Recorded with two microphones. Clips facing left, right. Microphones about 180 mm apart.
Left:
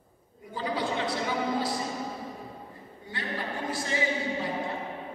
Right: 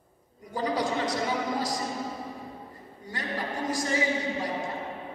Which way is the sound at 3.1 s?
45° right (ahead or behind).